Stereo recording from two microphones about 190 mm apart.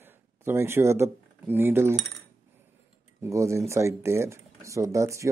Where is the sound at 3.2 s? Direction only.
15° right (ahead or behind).